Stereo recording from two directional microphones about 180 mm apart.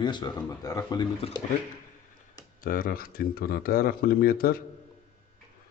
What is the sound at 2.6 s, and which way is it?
Speech, 50° left (ahead or behind).